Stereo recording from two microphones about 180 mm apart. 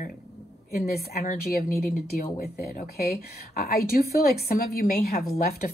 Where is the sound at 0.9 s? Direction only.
55° left (ahead or behind).